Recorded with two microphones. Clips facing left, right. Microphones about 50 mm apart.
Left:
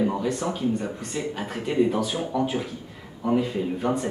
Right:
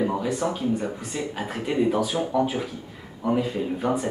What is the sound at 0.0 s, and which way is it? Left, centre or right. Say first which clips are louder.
Speech: even; centre.